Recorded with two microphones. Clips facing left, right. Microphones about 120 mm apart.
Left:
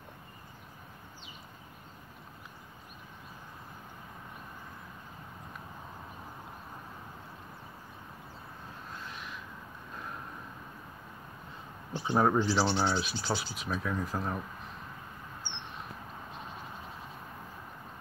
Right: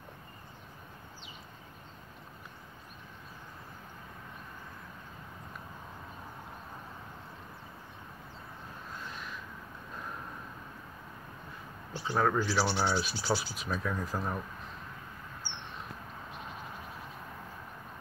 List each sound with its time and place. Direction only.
11.9 s speech: 20° left (ahead or behind)
12.6 s speech: 5° right (ahead or behind)